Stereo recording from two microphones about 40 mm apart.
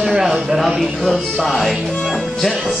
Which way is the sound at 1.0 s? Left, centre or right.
Centre.